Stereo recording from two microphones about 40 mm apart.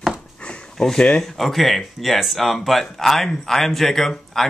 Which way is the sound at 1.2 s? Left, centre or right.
Centre.